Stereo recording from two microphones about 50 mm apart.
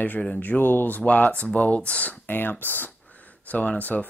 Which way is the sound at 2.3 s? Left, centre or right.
Left.